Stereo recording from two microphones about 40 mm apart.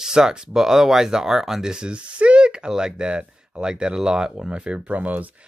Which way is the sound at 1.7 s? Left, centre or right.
Right.